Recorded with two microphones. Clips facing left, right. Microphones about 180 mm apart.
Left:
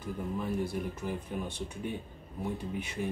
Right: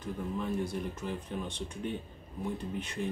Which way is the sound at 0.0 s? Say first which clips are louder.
Even; 10° left (ahead or behind).